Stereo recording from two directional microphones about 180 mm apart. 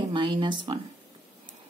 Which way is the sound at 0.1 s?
25° right (ahead or behind).